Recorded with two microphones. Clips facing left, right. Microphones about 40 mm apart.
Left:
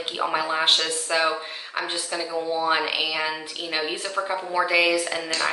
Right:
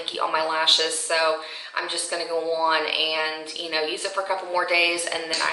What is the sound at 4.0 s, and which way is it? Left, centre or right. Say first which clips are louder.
Speech: right 1 dB; centre.